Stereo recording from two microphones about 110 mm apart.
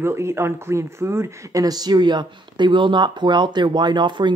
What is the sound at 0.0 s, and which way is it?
Speech, 25° right (ahead or behind).